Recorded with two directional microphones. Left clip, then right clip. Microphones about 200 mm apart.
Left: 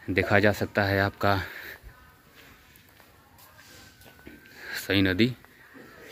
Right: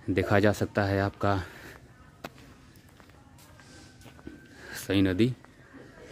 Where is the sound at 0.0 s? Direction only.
20° right (ahead or behind).